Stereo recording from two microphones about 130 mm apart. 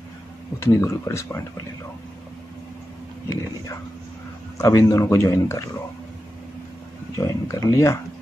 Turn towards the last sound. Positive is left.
turn(degrees=25)  # may be behind; listen again after turning